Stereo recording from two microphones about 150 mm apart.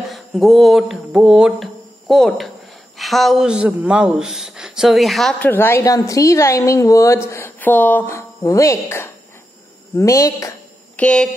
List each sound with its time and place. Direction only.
0.0 s speech: centre (ahead or behind)
5.4 s a woman's voice: 15° left (ahead or behind)
11.0 s speech: 5° left (ahead or behind)